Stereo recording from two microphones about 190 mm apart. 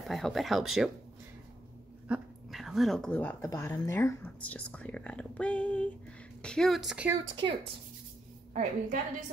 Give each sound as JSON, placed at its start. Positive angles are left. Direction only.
{"t": 0.1, "sound": "speech", "side_deg": 0}
{"t": 2.0, "sound": "speech", "side_deg": -5}
{"t": 8.5, "sound": "a woman's voice", "side_deg": -40}